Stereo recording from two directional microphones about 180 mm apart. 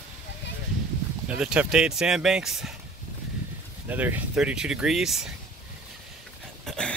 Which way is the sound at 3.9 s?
10° right (ahead or behind).